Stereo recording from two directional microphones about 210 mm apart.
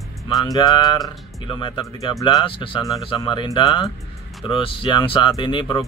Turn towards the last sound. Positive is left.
turn(degrees=20)  # may be behind; listen again after turning